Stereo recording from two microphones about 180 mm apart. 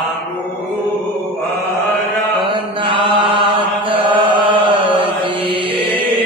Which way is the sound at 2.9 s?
25° right (ahead or behind).